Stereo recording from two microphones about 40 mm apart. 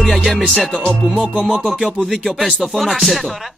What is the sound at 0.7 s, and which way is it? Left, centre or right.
Speech, left.